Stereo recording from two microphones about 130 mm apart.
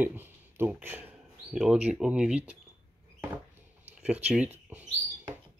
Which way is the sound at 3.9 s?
10° right (ahead or behind).